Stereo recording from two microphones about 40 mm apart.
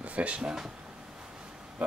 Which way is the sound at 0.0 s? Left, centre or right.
Right.